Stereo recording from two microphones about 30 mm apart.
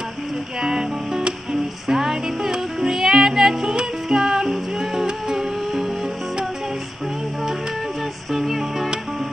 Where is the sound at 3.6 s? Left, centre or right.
Right.